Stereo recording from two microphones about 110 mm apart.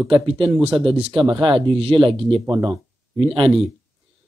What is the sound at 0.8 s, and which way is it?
Speech, 50° right (ahead or behind).